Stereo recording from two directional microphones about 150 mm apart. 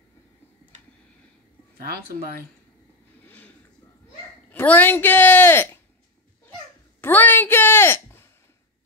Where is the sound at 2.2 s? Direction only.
85° right.